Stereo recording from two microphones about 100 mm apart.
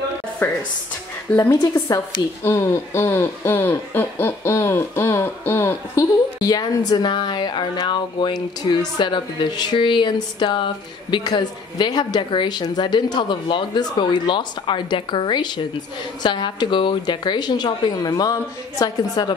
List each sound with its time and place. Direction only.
0.4 s speech: 25° left (ahead or behind)
5.9 s a woman's voice: 40° left (ahead or behind)